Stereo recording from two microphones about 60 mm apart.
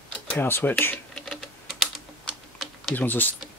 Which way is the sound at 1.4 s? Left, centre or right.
Centre.